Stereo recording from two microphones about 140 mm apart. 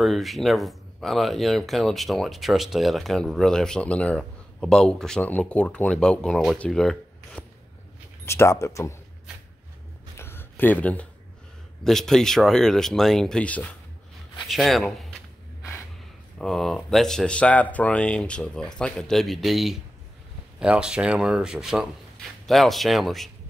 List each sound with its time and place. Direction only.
0.0 s speech: centre (ahead or behind)
8.3 s speech: 20° left (ahead or behind)
10.1 s a sound: 15° left (ahead or behind)
11.8 s speech: 5° left (ahead or behind)
16.3 s speech: centre (ahead or behind)